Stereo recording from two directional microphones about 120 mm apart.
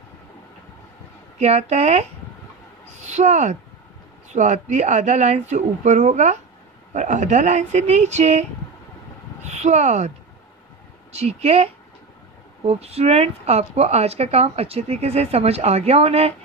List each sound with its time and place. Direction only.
1.4 s speech: 65° right (ahead or behind)
6.9 s speech: 90° right; by 16.3 s 60° right (ahead or behind)